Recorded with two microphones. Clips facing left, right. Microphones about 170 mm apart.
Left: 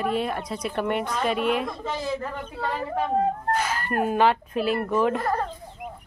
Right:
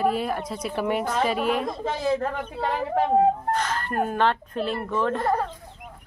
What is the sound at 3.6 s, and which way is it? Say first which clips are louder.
Speech: even; 10° left (ahead or behind).